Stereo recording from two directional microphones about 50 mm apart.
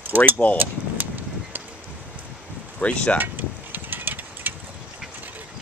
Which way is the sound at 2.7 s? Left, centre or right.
Left.